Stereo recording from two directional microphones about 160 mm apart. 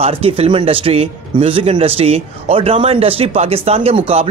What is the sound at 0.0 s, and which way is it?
Speech, 40° right (ahead or behind).